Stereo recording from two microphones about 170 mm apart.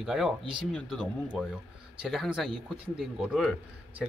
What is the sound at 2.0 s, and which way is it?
Speech, centre (ahead or behind).